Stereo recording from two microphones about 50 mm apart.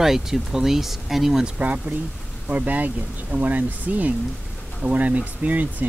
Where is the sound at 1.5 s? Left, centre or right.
Right.